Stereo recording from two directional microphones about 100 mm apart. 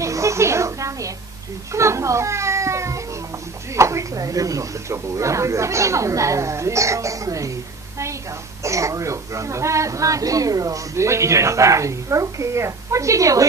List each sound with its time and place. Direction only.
0.0 s a sound: 30° right (ahead or behind)
1.7 s speech: 30° right (ahead or behind)
8.6 s speech: 30° right (ahead or behind)